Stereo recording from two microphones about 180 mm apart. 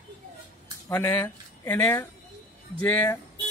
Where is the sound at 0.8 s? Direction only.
15° left (ahead or behind).